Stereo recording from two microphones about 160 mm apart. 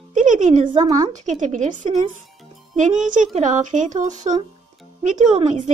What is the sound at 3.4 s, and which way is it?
A woman's voice, 50° right (ahead or behind).